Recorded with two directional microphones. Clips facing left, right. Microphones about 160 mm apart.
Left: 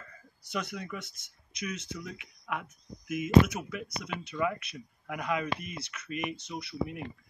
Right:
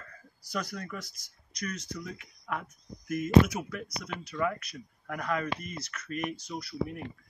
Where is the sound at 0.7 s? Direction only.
5° left (ahead or behind).